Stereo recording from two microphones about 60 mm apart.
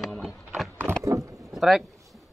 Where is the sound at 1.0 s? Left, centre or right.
Right.